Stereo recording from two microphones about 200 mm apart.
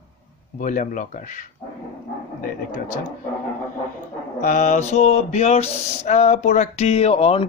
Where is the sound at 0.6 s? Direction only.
40° left (ahead or behind).